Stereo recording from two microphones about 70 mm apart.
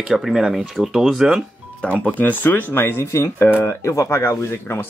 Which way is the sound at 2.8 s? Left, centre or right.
Left.